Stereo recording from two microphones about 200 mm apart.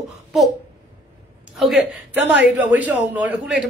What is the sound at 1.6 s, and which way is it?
A woman's voice, centre (ahead or behind).